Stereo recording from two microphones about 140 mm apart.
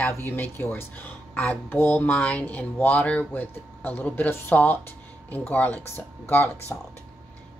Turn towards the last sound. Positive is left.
turn(degrees=15)  # may be behind; listen again after turning